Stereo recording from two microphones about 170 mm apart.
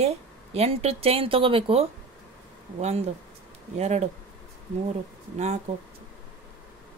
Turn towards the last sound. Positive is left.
turn(degrees=-40)  # may be behind; listen again after turning